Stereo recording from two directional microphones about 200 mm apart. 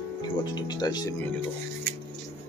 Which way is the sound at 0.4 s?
20° left (ahead or behind).